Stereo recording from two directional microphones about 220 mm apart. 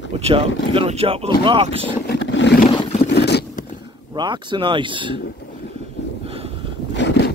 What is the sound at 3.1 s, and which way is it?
Vehicle, 50° left (ahead or behind).